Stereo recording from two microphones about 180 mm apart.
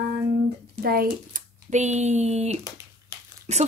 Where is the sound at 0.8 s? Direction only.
55° right (ahead or behind).